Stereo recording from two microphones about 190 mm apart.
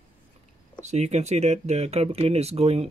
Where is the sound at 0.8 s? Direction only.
35° right (ahead or behind).